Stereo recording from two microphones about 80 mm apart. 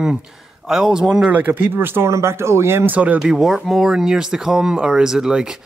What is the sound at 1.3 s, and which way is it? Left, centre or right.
Speech, right.